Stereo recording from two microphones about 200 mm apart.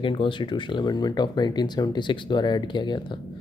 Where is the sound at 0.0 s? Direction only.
25° left (ahead or behind).